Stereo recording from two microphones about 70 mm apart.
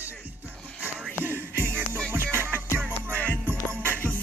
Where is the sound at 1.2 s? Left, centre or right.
Right.